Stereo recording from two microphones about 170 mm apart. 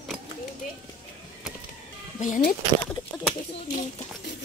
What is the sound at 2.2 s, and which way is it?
Speech, 50° left (ahead or behind).